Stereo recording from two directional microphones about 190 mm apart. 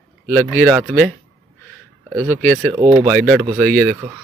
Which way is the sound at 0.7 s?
10° right (ahead or behind).